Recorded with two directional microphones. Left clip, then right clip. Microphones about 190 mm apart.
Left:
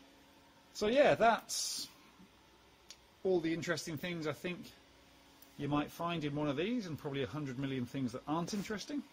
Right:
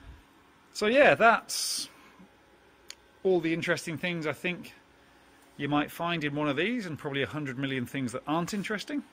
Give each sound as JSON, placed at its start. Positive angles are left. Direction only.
{"t": 0.7, "sound": "speech", "side_deg": -15}
{"t": 2.9, "sound": "speech", "side_deg": -15}